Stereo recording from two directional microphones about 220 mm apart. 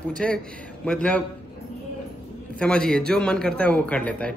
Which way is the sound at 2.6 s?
5° left (ahead or behind).